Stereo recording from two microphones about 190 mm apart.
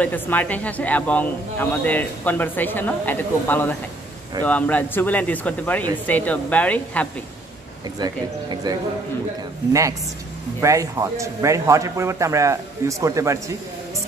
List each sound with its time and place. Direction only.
0.0 s a man's voice: 10° left (ahead or behind)
8.6 s a man's voice: 20° right (ahead or behind)